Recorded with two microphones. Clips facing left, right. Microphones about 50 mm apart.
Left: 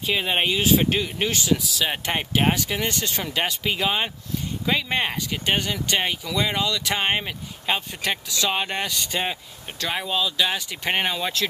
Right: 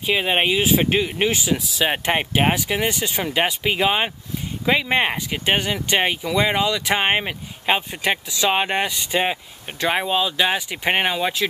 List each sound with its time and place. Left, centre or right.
0.0 s speech: centre